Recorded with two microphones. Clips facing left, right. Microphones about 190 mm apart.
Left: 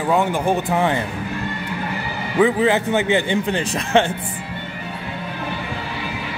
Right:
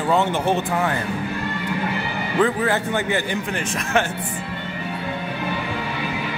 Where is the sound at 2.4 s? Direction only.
20° left (ahead or behind).